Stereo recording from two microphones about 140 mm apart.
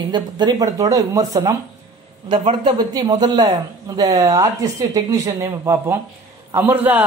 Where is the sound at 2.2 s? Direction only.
35° right (ahead or behind).